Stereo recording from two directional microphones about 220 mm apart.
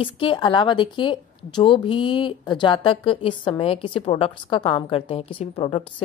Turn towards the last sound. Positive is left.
turn(degrees=25)  # may be behind; listen again after turning